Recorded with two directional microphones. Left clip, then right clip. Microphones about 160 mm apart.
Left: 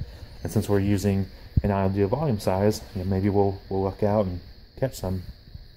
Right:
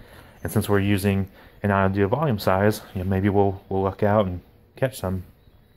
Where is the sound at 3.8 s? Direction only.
Centre (ahead or behind).